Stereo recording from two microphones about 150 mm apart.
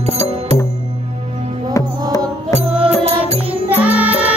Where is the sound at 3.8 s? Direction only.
10° right (ahead or behind).